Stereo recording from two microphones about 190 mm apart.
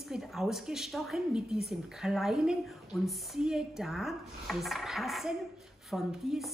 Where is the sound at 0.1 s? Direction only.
Centre (ahead or behind).